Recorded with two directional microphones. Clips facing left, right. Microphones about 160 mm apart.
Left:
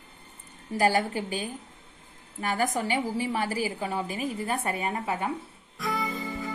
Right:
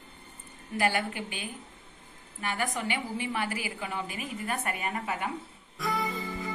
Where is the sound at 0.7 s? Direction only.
40° left (ahead or behind).